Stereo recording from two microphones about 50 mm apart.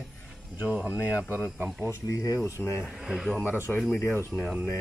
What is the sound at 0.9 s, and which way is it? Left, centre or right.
Speech, left.